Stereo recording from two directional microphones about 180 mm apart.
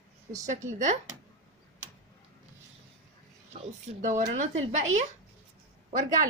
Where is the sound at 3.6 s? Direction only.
45° right (ahead or behind).